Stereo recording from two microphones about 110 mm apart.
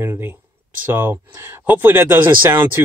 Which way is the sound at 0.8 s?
20° right (ahead or behind).